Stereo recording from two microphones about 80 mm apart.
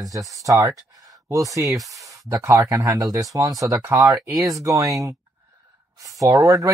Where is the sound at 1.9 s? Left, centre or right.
Right.